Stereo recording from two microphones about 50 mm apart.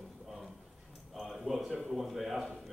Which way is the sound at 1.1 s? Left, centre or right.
Centre.